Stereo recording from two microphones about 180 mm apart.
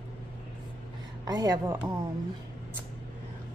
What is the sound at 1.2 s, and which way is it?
Speech, 20° right (ahead or behind).